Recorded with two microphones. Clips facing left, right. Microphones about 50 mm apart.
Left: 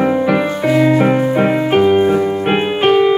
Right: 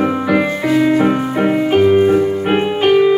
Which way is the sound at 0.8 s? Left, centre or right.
Centre.